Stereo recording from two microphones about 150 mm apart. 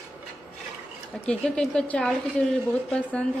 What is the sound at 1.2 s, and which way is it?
A woman's voice, 5° left (ahead or behind).